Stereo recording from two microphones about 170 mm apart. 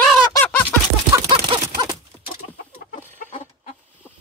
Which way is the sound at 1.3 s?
25° right (ahead or behind).